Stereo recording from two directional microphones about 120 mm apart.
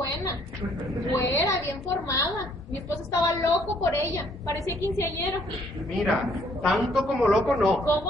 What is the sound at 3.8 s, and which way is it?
A woman's voice, 25° left (ahead or behind).